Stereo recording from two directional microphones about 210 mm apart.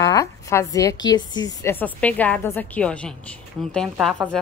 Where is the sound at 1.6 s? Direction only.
10° left (ahead or behind).